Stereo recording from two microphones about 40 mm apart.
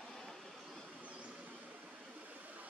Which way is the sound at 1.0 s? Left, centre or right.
Right.